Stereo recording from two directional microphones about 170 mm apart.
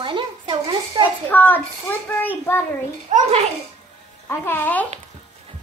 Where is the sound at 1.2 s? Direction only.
10° left (ahead or behind).